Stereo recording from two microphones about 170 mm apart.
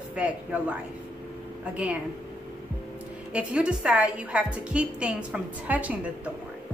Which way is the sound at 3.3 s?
5° right (ahead or behind).